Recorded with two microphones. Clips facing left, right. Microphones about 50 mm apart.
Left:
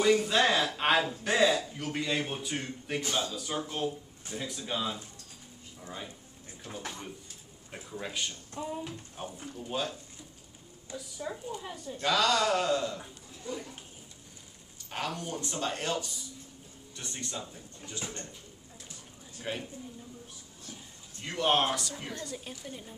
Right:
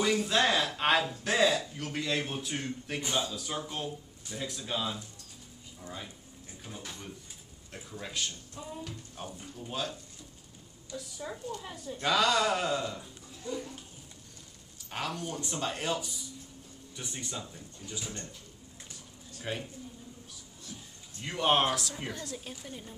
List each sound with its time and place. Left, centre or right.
0.0 s a sound: centre
1.2 s a man's voice: centre
3.0 s speech: centre
3.3 s a man's voice: centre
6.7 s speech: left
8.0 s speech: centre
11.0 s a man's voice: centre
12.1 s speech: centre
13.5 s speech: centre
14.9 s a man's voice: centre
17.7 s speech: centre
19.4 s a man's voice: centre
21.2 s a man's voice: centre